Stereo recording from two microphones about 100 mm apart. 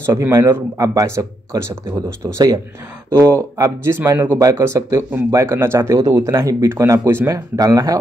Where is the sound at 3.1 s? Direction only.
25° right (ahead or behind).